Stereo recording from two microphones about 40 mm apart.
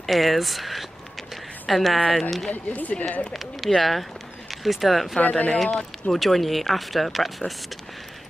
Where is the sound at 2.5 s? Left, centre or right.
Left.